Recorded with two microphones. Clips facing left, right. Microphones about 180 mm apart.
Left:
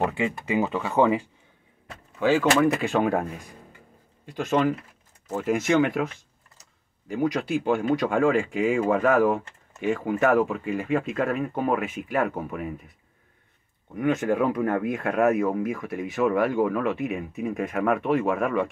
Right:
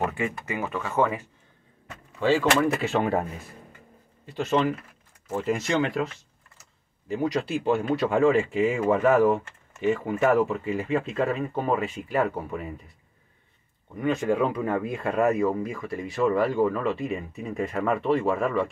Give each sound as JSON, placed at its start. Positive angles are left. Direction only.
{"t": 0.0, "sound": "speech", "side_deg": 15}
{"t": 2.2, "sound": "speech", "side_deg": 0}
{"t": 13.9, "sound": "speech", "side_deg": 5}